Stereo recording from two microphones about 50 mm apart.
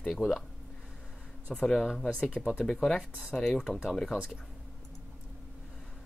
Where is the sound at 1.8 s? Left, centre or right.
Centre.